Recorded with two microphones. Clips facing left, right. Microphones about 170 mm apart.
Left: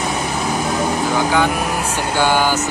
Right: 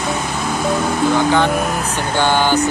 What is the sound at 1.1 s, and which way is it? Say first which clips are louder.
Vehicle: even; 10° left (ahead or behind).